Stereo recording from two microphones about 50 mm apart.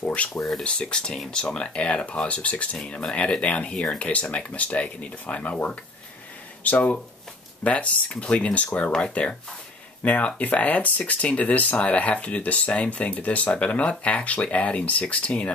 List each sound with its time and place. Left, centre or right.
0.0 s speech: left
6.6 s speech: left